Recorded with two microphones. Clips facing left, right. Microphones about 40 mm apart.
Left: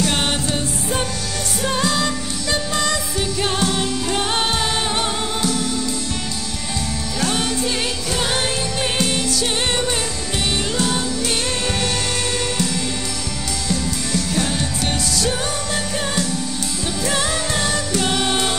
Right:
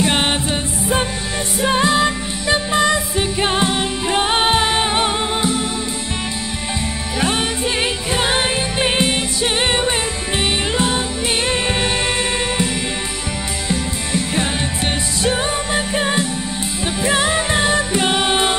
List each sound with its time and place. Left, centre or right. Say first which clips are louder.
0.0 s music: right 3 dB; right
7.2 s music: right 2 dB; right
13.7 s music: right 1 dB; right